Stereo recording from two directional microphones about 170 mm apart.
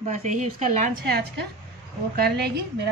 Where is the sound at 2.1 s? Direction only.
65° right (ahead or behind).